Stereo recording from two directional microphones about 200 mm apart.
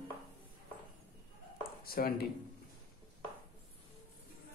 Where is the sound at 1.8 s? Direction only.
45° left (ahead or behind).